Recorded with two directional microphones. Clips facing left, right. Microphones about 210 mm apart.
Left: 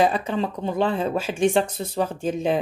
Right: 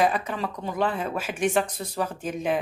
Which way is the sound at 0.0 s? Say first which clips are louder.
Left 3 dB; 30° left (ahead or behind).